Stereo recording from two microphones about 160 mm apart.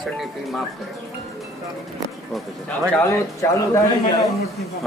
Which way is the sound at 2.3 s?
10° left (ahead or behind).